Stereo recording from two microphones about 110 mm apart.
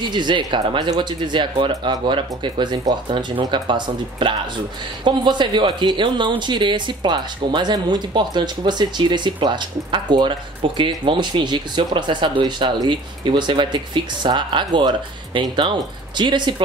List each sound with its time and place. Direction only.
0.0 s speech: 45° right (ahead or behind)